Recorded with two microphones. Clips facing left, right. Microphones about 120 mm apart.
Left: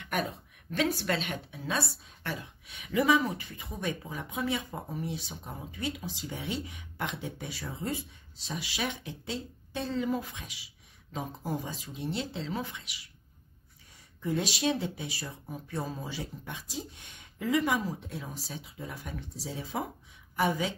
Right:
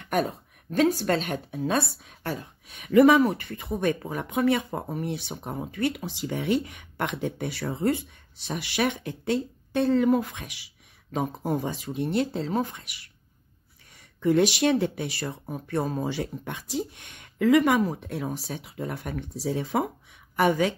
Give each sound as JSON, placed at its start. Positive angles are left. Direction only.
{"t": 0.0, "sound": "a woman's voice", "side_deg": -40}
{"t": 14.2, "sound": "speech", "side_deg": -70}